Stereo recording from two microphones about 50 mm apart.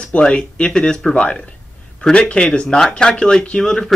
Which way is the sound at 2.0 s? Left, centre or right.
Centre.